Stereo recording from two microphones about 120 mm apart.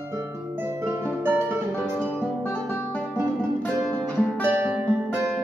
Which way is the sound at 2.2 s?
10° left (ahead or behind).